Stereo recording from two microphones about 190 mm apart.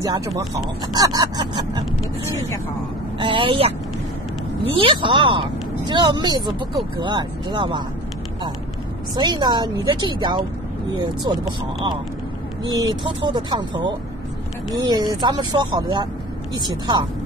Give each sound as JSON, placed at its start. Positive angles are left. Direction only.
{"t": 0.0, "sound": "speech", "side_deg": -20}
{"t": 4.7, "sound": "speech", "side_deg": -25}
{"t": 9.1, "sound": "speech", "side_deg": -25}
{"t": 12.6, "sound": "speech", "side_deg": -20}